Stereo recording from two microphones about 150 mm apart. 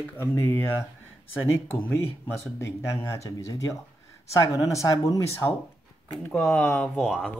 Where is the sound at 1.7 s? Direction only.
15° left (ahead or behind).